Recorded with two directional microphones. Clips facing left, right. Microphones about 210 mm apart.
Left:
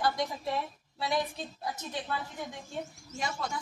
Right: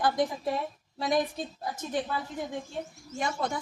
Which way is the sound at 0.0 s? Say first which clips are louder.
Right 4 dB; 50° right (ahead or behind).